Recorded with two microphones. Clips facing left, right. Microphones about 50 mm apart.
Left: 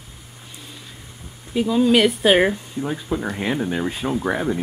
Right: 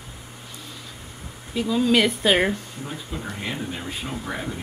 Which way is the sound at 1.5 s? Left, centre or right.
Centre.